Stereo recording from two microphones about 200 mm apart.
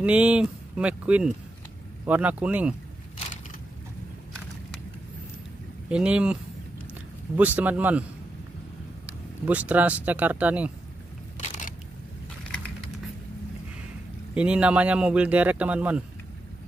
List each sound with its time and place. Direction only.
0.0 s speech: 5° right (ahead or behind)
5.9 s speech: 5° right (ahead or behind)
7.3 s speech: 10° right (ahead or behind)
9.5 s speech: 5° right (ahead or behind)
11.3 s single-lens reflex camera: 35° left (ahead or behind)
14.3 s speech: 5° right (ahead or behind)